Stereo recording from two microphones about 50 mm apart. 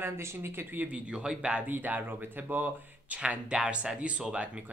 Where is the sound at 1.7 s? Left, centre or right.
Right.